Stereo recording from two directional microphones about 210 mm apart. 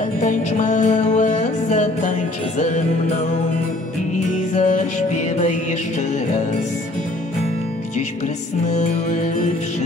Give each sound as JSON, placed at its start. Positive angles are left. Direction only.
{"t": 0.2, "sound": "music", "side_deg": 35}
{"t": 4.6, "sound": "music", "side_deg": 35}
{"t": 8.6, "sound": "music", "side_deg": 35}